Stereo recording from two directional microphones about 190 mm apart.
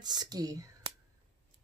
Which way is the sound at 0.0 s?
20° right (ahead or behind).